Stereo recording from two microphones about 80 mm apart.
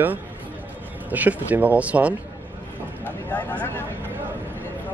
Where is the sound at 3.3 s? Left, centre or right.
Centre.